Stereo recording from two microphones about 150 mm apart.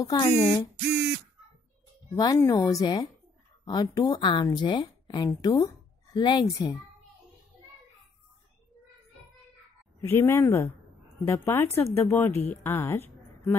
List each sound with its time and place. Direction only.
0.0 s speech: 25° left (ahead or behind)
2.1 s speech: 20° left (ahead or behind)
10.0 s speech: 15° left (ahead or behind)
12.6 s a sound: 15° left (ahead or behind)